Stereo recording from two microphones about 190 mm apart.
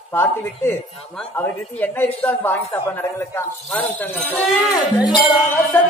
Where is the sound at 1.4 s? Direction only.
10° left (ahead or behind).